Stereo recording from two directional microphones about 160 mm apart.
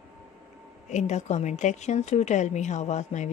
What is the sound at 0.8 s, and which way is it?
A woman's voice, 45° left (ahead or behind).